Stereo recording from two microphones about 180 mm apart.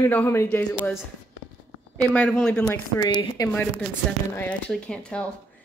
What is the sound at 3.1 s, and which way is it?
Speech, 25° left (ahead or behind).